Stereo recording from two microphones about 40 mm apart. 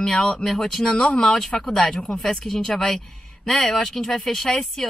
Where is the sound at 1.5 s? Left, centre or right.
Left.